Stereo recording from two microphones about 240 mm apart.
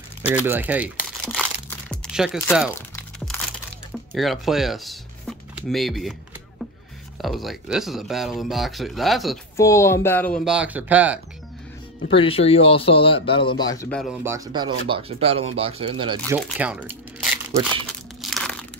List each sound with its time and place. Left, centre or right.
0.5 s speech: centre
1.7 s a sound: centre
2.7 s music: centre
4.1 s speech: centre
7.2 s speech: centre
9.6 s speech: centre
12.1 s speech: left; by 14.1 s centre
14.2 s speech: centre
16.3 s speech: centre
18.2 s crumpling: centre